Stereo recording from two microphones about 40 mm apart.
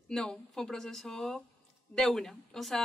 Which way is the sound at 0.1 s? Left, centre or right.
Centre.